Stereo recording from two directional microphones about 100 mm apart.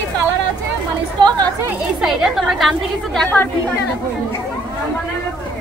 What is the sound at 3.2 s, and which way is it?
Speech, 20° left (ahead or behind).